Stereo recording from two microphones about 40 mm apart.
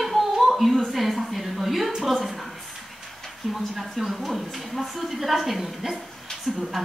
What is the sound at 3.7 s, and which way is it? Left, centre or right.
Speech, centre.